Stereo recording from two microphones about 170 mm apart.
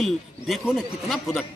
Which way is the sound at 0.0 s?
Centre (ahead or behind).